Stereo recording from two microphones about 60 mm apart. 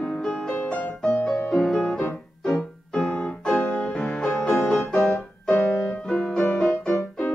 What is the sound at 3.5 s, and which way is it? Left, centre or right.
Music, left.